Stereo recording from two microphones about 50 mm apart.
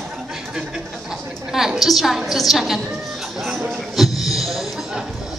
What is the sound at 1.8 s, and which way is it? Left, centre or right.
A woman's voice, centre.